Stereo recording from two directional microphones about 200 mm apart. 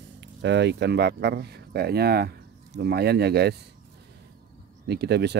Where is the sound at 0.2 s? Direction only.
60° right (ahead or behind).